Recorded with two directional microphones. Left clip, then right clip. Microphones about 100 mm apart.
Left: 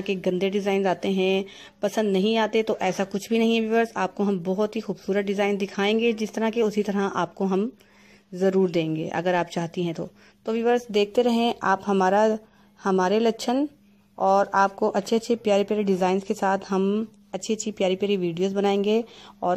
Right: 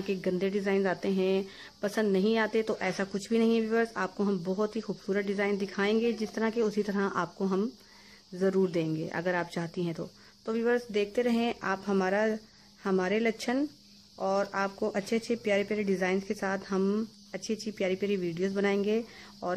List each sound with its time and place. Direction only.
0.0 s speech: 30° left (ahead or behind)
10.9 s speech: 40° left (ahead or behind)